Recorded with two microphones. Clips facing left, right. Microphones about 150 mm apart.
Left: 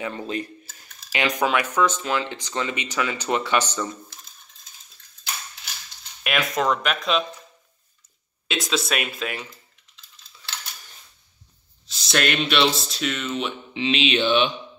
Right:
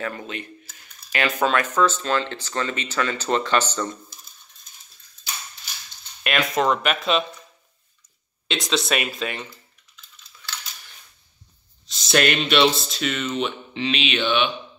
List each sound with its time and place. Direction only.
0.0 s speech: 30° left (ahead or behind)
1.1 s speech: 15° left (ahead or behind)
6.2 s speech: centre (ahead or behind)
8.5 s speech: centre (ahead or behind)
11.8 s speech: centre (ahead or behind)
13.7 s mantra: 25° left (ahead or behind)